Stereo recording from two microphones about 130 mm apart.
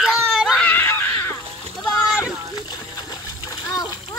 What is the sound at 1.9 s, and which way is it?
Splash, 25° left (ahead or behind).